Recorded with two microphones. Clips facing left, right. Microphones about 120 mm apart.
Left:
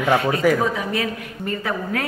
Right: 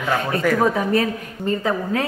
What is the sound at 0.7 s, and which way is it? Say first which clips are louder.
A woman's voice: right 5 dB; 35° right (ahead or behind).